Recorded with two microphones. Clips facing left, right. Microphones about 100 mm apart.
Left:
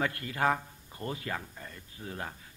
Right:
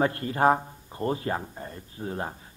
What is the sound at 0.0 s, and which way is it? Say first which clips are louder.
A man's voice: right 7 dB; 35° right (ahead or behind).